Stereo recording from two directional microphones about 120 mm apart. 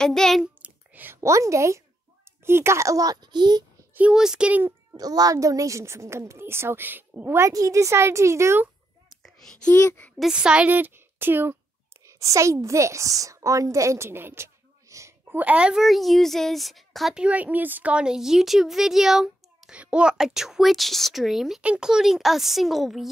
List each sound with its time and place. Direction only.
0.0 s a woman's voice: 5° left (ahead or behind)
0.6 s a sound: 15° right (ahead or behind)
2.4 s a child's voice: 20° right (ahead or behind); by 3.6 s 35° right (ahead or behind)
3.9 s a child's voice: 10° right (ahead or behind)
4.9 s a child's voice: 30° right (ahead or behind)
9.2 s a sound: 5° left (ahead or behind)
10.1 s speech: 5° right (ahead or behind)
12.0 s whispering: 25° right (ahead or behind)
12.6 s a woman's voice: 25° right (ahead or behind); by 23.0 s centre (ahead or behind)